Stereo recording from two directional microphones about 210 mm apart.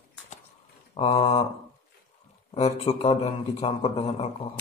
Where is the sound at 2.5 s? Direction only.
30° left (ahead or behind).